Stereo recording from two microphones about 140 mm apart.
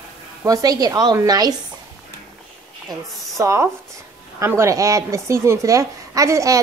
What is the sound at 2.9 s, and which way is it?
A woman's voice, 20° right (ahead or behind).